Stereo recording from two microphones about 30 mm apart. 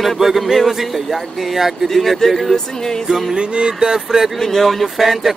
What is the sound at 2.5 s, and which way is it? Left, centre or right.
Music, centre.